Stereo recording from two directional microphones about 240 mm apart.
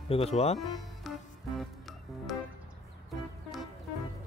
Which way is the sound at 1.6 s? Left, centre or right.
Centre.